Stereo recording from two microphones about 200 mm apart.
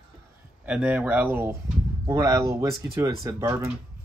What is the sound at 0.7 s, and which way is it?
Speech, 5° right (ahead or behind).